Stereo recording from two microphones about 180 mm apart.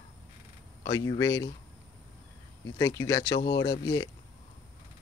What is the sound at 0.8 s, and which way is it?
Speech, 20° left (ahead or behind).